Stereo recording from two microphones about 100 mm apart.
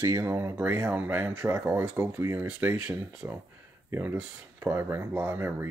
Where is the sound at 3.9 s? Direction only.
20° right (ahead or behind).